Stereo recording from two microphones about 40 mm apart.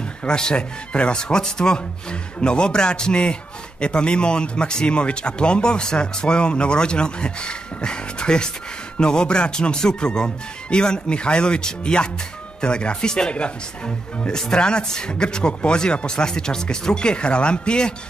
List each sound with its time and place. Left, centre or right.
0.2 s speech: left
14.3 s speech: centre